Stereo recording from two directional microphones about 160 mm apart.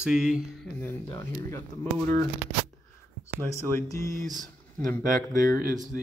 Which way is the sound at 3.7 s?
15° left (ahead or behind).